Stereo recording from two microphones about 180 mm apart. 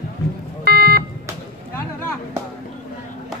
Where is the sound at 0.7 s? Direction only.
60° right (ahead or behind).